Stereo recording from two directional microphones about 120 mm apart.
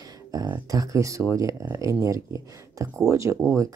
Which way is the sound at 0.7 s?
30° right (ahead or behind).